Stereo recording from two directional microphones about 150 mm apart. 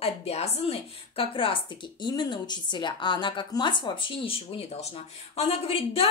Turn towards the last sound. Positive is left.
turn(degrees=40)  # may be behind; listen again after turning